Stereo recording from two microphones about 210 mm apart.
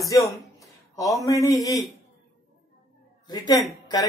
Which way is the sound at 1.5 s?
Centre (ahead or behind).